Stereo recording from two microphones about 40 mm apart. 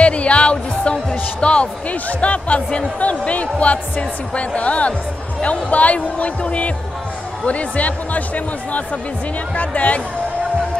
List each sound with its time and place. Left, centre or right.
0.0 s music: left
1.4 s speech: left
9.6 s speech: left